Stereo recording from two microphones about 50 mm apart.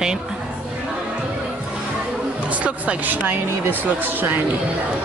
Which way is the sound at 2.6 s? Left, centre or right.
Right.